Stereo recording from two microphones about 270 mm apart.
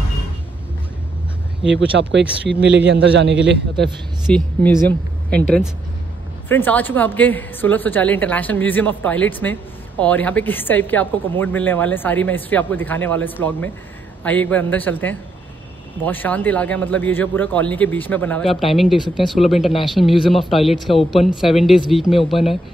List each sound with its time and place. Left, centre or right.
1.6 s a man's voice: right
4.3 s a man's voice: centre
6.5 s a woman's voice: centre